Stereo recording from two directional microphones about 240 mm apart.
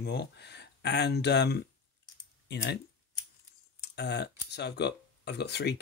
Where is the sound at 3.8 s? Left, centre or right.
Left.